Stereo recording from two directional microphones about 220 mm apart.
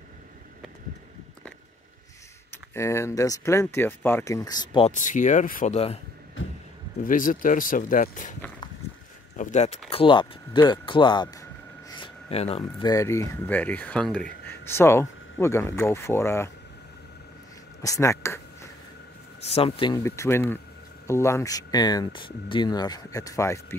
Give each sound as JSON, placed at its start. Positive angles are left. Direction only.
{"t": 2.7, "sound": "speech", "side_deg": 15}
{"t": 6.4, "sound": "a sound", "side_deg": 60}
{"t": 7.1, "sound": "speech", "side_deg": 40}
{"t": 9.4, "sound": "speech", "side_deg": 30}
{"t": 17.8, "sound": "speech", "side_deg": 15}
{"t": 19.4, "sound": "speech", "side_deg": 25}